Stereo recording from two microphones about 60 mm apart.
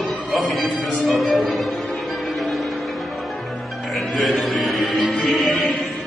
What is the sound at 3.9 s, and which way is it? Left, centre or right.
Music, centre.